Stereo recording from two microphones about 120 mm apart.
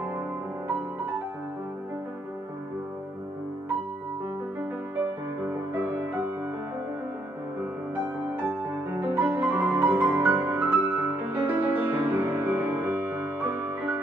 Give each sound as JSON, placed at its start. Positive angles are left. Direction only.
{"t": 5.4, "sound": "music", "side_deg": -20}
{"t": 8.3, "sound": "music", "side_deg": -15}